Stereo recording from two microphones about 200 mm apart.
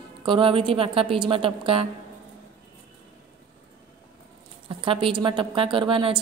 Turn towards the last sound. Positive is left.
turn(degrees=-25)  # may be behind; listen again after turning